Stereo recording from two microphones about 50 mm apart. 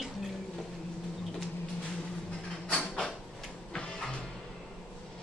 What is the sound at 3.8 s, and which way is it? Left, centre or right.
Music, centre.